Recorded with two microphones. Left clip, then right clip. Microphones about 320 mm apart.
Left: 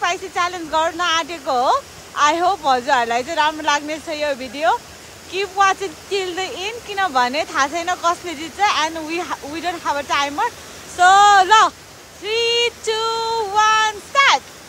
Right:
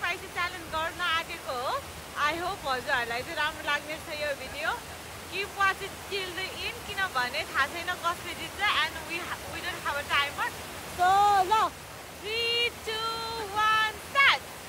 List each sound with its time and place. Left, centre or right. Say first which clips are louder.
0.0 s a sound: left 11 dB; left
2.1 s speech: left 13 dB; left
12.3 s child singing: left 10 dB; left